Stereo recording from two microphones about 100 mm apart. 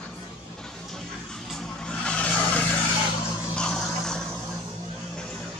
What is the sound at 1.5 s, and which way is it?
Vehicle, 5° left (ahead or behind).